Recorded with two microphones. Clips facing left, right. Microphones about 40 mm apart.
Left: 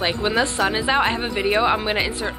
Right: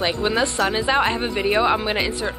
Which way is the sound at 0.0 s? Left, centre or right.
Centre.